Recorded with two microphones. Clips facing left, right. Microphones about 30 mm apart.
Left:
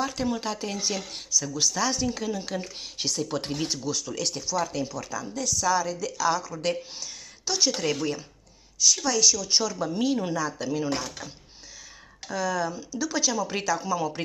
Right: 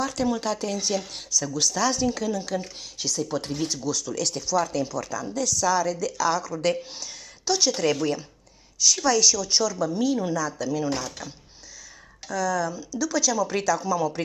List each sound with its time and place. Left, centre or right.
0.0 s speech: centre
2.1 s a woman's voice: centre
9.5 s speech: left
12.3 s speech: left